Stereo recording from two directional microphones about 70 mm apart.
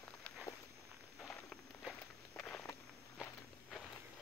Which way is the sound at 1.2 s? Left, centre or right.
Centre.